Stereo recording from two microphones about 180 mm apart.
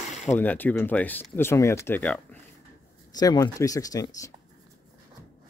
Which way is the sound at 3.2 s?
20° left (ahead or behind).